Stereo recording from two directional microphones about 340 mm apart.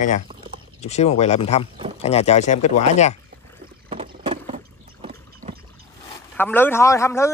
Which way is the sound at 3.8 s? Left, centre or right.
Centre.